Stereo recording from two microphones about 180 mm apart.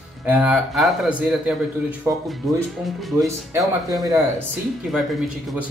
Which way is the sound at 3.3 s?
15° right (ahead or behind).